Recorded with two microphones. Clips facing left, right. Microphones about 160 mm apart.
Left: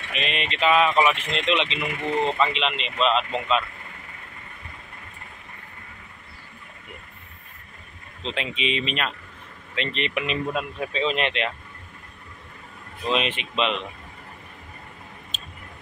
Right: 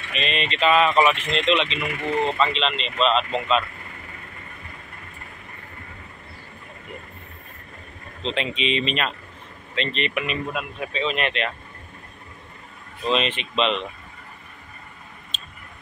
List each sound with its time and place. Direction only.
0.1 s speech: 10° left (ahead or behind)
8.2 s speech: 5° left (ahead or behind)
9.8 s speech: 20° left (ahead or behind)
13.1 s speech: 10° left (ahead or behind)